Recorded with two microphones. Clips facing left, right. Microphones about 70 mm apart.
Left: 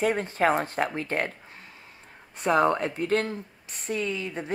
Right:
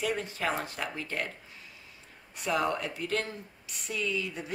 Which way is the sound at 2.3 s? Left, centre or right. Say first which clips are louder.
Left 7 dB; left.